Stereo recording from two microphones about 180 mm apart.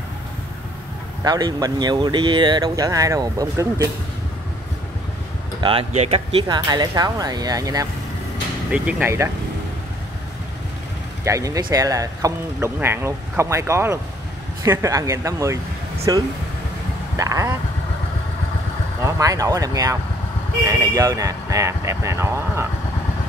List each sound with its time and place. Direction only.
1.2 s speech: 20° right (ahead or behind)
5.6 s speech: 30° right (ahead or behind)
6.4 s speech: 20° right (ahead or behind)
11.2 s speech: 20° right (ahead or behind)
19.0 s speech: 20° right (ahead or behind)